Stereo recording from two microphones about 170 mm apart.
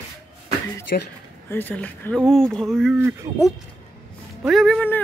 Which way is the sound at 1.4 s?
10° left (ahead or behind).